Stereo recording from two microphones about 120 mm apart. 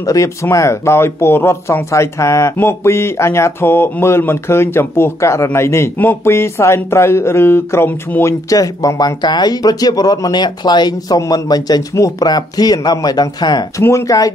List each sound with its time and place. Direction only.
0.0 s speech: 25° left (ahead or behind)
13.8 s speech: 25° left (ahead or behind)